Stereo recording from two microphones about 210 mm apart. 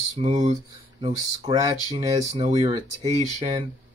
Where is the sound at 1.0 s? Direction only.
20° right (ahead or behind).